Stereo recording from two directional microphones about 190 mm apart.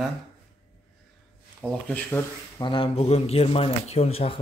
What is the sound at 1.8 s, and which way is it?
Speech, 10° left (ahead or behind).